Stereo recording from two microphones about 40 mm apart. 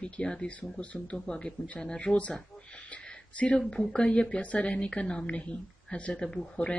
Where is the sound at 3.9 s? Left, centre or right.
Left.